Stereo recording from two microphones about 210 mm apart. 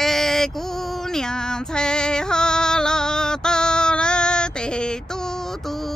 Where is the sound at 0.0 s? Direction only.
Centre (ahead or behind).